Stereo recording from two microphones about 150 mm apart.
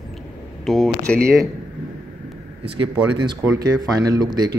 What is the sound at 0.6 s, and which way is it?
Speech, centre (ahead or behind).